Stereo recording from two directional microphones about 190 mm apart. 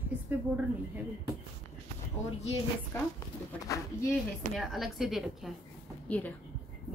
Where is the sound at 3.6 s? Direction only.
15° left (ahead or behind).